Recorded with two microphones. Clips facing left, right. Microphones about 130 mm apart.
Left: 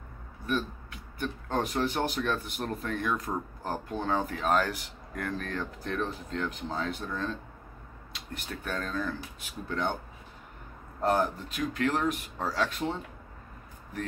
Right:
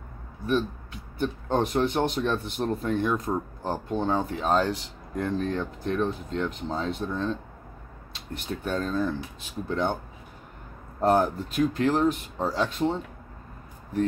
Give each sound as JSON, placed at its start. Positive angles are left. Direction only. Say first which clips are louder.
{"t": 1.1, "sound": "speech", "louder": "right 5 dB", "side_deg": -30}
{"t": 8.6, "sound": "speech", "louder": "right 6 dB", "side_deg": -30}
{"t": 11.0, "sound": "speech", "louder": "right 5 dB", "side_deg": -35}